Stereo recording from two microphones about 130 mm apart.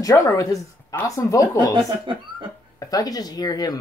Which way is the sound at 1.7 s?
40° right (ahead or behind).